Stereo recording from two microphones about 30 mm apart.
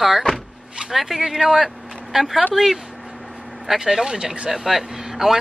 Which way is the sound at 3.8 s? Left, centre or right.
Right.